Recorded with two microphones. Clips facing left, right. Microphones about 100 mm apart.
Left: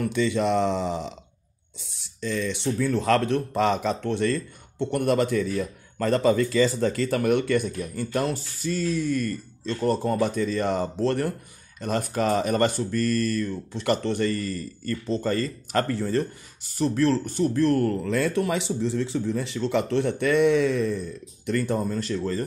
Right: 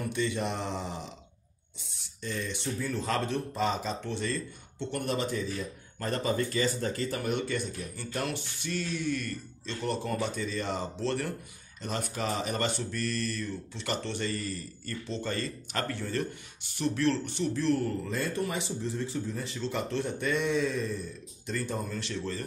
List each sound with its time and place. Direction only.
0.1 s speech: 90° left; by 21.8 s 60° left (ahead or behind)
21.8 s speech: 40° left (ahead or behind)